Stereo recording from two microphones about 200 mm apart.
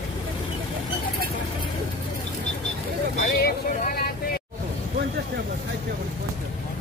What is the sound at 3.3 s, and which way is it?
Vehicle, 50° left (ahead or behind).